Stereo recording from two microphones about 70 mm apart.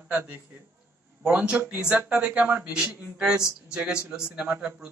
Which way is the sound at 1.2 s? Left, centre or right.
Centre.